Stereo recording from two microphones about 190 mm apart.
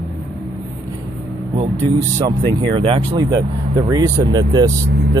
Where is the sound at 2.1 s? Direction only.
25° right (ahead or behind).